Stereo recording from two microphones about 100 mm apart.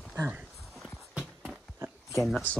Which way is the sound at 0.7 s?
Centre (ahead or behind).